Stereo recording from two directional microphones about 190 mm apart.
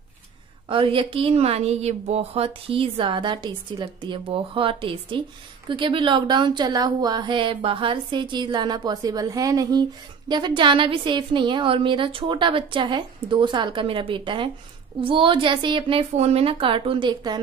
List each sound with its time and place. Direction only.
0.7 s a woman's voice: 25° right (ahead or behind)